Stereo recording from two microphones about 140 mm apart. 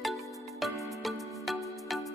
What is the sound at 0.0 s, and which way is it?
Music, centre (ahead or behind).